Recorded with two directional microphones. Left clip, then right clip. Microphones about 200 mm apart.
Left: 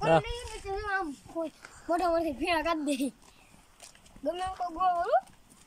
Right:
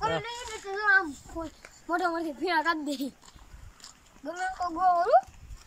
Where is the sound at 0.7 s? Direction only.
10° left (ahead or behind).